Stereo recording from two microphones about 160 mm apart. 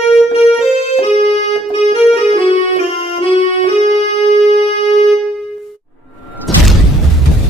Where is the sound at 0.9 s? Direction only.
40° left (ahead or behind).